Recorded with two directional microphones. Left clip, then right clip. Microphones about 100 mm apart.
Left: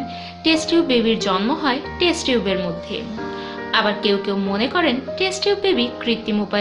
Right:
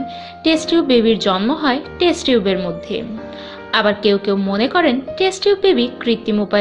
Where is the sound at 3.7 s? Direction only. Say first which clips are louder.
Right 4 dB; 60° right (ahead or behind).